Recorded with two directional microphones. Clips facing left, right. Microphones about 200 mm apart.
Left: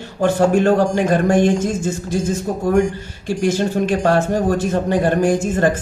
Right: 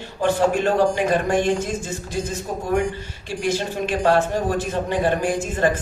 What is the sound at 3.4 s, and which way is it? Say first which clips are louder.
Speech: left 6 dB; 45° left (ahead or behind).